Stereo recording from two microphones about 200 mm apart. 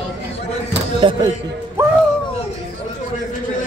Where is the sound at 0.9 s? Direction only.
25° right (ahead or behind).